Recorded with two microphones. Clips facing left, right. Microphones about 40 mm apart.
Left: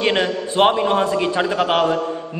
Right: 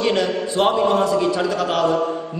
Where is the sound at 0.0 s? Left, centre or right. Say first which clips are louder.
Even; left.